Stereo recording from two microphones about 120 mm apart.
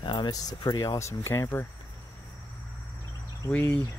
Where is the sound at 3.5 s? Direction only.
15° left (ahead or behind).